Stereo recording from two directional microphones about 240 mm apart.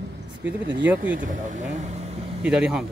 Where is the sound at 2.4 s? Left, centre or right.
Centre.